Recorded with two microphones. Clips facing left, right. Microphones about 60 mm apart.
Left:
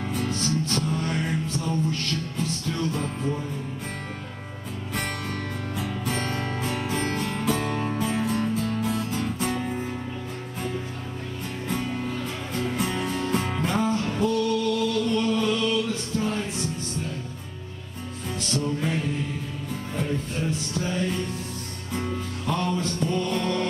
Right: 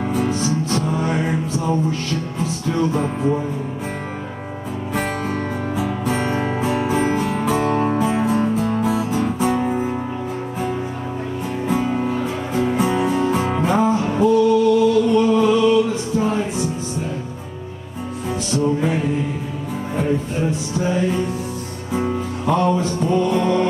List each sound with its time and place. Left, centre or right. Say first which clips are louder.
0.0 s music: right 8 dB; centre
4.9 s music: right 8 dB; centre
11.6 s music: right 9 dB; centre
18.5 s music: right 8 dB; centre